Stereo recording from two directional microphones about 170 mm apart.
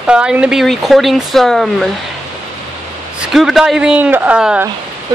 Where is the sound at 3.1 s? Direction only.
Centre (ahead or behind).